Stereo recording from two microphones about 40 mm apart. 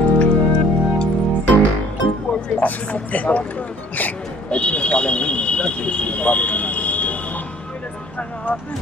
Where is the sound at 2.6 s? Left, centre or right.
Left.